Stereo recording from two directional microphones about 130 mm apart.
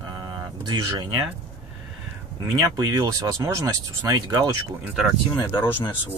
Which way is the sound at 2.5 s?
30° right (ahead or behind).